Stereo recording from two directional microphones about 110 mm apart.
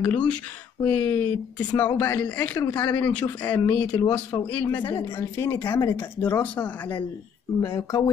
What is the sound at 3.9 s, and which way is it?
Speech, 40° left (ahead or behind).